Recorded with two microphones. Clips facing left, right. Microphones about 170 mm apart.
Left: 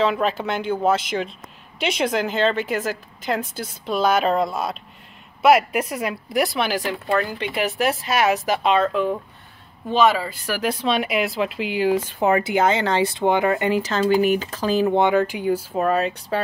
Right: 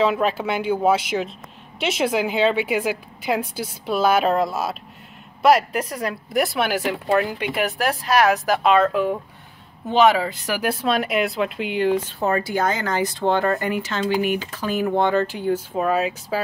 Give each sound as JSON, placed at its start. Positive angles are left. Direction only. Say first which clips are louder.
{"t": 0.0, "sound": "a woman's voice", "louder": "right 1 dB", "side_deg": -5}
{"t": 9.8, "sound": "speech", "louder": "right 2 dB", "side_deg": -15}
{"t": 13.2, "sound": "speech", "louder": "right 1 dB", "side_deg": 15}
{"t": 13.7, "sound": "speech", "louder": "left 4 dB", "side_deg": 35}
{"t": 14.9, "sound": "speech", "louder": "right 1 dB", "side_deg": 20}